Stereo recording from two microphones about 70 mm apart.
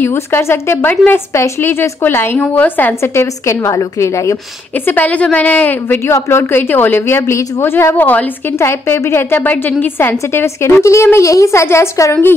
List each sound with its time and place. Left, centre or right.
0.0 s a woman's voice: left
2.3 s a woman's voice: centre
3.0 s a woman's voice: left
4.8 s a woman's voice: left
8.5 s a woman's voice: left